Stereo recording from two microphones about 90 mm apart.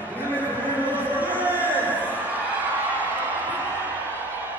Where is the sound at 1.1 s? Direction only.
20° right (ahead or behind).